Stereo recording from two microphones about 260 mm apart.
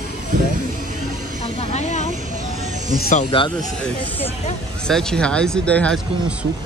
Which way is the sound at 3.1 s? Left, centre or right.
Left.